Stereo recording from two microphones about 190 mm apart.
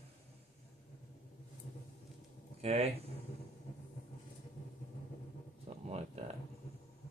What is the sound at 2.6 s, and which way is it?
Speech, 35° right (ahead or behind).